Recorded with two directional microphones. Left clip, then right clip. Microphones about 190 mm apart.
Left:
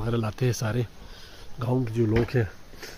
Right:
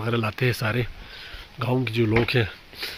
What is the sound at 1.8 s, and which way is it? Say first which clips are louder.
Speech: right 3 dB; 20° right (ahead or behind).